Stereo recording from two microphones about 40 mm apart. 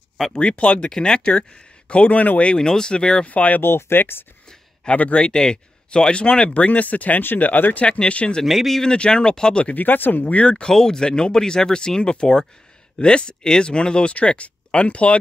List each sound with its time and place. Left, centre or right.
0.3 s speech: left
0.8 s speech: centre; by 2.4 s left
2.4 s speech: left
3.3 s speech: left
3.6 s speech: left
4.9 s speech: left
5.2 s speech: centre
6.5 s speech: left
7.8 s speech: left
8.5 s speech: centre
8.8 s speech: left
9.8 s speech: left
10.2 s speech: left
10.5 s speech: centre; by 15.1 s left